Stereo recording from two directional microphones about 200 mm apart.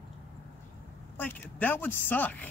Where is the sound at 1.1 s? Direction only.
10° left (ahead or behind).